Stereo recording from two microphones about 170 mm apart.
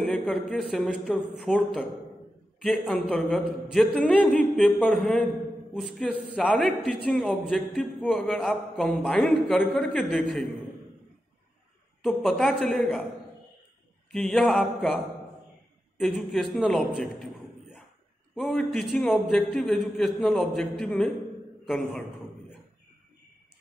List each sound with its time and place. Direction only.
0.0 s a man's voice: 5° left (ahead or behind)
2.9 s a man's voice: 5° left (ahead or behind)
12.0 s a man's voice: centre (ahead or behind)
14.1 s a man's voice: 5° left (ahead or behind)
16.0 s a man's voice: centre (ahead or behind)
18.3 s a man's voice: centre (ahead or behind)